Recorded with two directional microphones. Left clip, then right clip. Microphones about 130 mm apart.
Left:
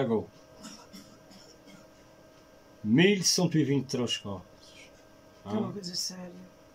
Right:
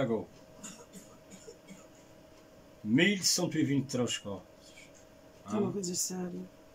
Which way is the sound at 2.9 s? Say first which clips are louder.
Left 4 dB; 35° left (ahead or behind).